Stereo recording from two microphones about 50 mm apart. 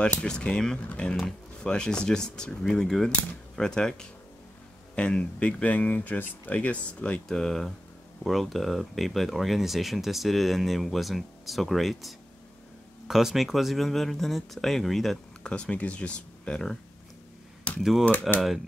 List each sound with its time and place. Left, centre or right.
0.0 s speech: left
5.5 s speech: left
7.2 s speech: centre
15.4 s speech: left
17.7 s speech: centre